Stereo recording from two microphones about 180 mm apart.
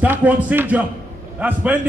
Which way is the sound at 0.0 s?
10° right (ahead or behind).